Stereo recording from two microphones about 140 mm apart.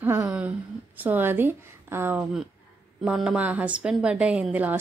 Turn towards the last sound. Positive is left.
turn(degrees=-10)  # may be behind; listen again after turning